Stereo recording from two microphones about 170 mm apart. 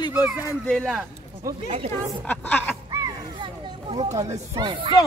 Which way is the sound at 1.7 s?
35° right (ahead or behind).